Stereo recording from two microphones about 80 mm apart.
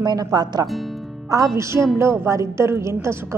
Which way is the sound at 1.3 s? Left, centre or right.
Right.